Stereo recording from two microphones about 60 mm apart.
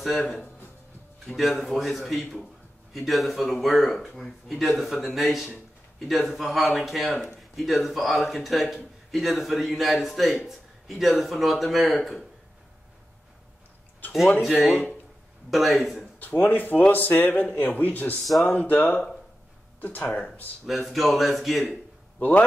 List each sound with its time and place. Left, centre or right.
0.0 s a man's voice: centre
14.7 s speech: centre
15.5 s a man's voice: centre
16.2 s speech: left
20.6 s a man's voice: centre